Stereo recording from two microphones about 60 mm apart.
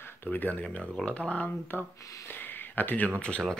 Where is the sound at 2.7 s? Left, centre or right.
Left.